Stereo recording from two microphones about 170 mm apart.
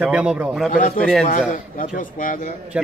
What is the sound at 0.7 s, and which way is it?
Speech, 50° left (ahead or behind).